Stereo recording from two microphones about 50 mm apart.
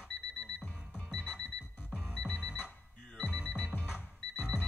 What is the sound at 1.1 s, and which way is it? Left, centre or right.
Music, centre.